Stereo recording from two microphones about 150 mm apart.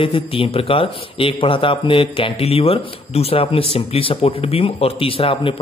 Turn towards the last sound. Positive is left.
turn(degrees=35)  # may be behind; listen again after turning